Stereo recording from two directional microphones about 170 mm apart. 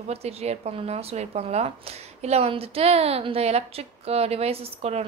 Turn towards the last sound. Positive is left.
turn(degrees=-35)  # may be behind; listen again after turning